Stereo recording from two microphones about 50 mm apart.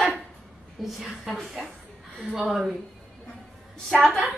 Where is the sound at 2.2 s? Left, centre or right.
Centre.